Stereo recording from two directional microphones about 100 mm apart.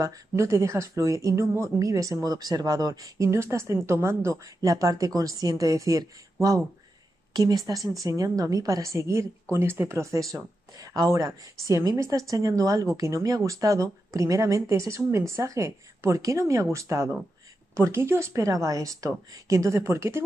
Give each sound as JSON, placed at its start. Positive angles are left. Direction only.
{"t": 0.0, "sound": "speech", "side_deg": -30}
{"t": 7.3, "sound": "speech", "side_deg": -40}